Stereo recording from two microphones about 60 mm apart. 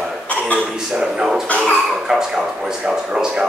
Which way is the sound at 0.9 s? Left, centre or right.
Centre.